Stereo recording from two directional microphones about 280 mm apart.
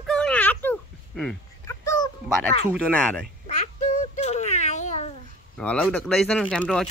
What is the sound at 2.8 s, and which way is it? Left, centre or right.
Speech, centre.